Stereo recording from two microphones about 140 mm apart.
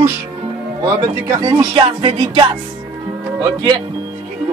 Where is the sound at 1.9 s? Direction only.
40° right (ahead or behind).